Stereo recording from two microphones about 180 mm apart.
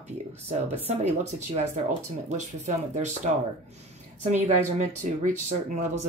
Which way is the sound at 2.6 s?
40° right (ahead or behind).